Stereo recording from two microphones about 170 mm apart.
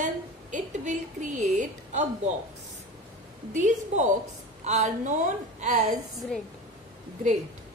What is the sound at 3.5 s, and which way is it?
A woman's voice, 45° right (ahead or behind).